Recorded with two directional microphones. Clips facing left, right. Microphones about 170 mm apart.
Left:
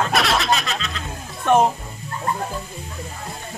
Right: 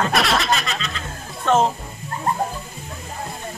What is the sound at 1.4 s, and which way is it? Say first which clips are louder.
Speech: left 1 dB; 15° left (ahead or behind).